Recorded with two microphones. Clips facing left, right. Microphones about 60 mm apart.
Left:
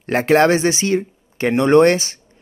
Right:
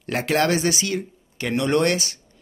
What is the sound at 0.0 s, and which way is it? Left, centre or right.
Speech, left.